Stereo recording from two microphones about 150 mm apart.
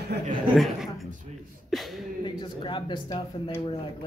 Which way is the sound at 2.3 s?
30° left (ahead or behind).